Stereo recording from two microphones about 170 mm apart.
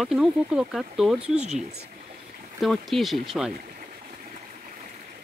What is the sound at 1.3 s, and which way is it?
Speech, 40° right (ahead or behind).